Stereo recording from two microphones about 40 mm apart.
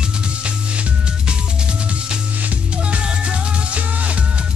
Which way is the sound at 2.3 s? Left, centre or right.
Right.